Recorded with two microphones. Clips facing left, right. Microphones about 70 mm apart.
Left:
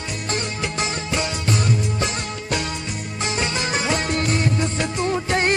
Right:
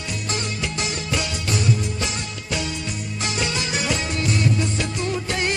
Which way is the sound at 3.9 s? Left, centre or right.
Left.